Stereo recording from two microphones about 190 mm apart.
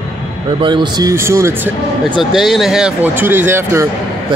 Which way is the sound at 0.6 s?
25° right (ahead or behind).